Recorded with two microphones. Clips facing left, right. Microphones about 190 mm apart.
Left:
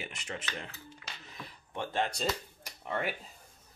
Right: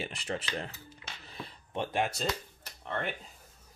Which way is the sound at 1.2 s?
30° right (ahead or behind).